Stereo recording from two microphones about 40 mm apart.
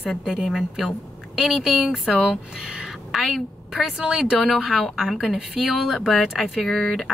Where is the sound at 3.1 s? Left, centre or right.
Centre.